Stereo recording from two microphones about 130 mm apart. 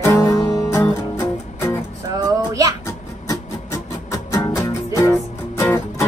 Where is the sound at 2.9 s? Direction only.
25° left (ahead or behind).